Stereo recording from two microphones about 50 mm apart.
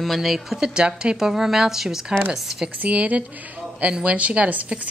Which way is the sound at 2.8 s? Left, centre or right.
Right.